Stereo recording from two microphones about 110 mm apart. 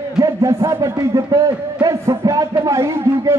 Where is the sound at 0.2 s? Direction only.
30° right (ahead or behind).